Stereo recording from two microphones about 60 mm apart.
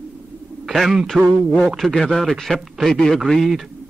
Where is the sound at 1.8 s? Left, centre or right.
Centre.